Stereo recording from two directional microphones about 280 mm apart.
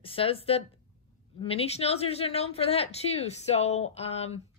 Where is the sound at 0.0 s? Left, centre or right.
Centre.